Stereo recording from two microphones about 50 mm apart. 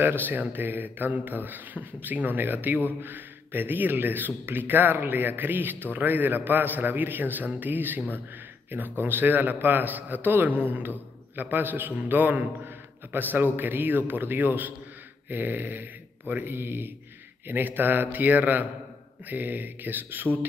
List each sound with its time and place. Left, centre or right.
0.0 s a man's voice: right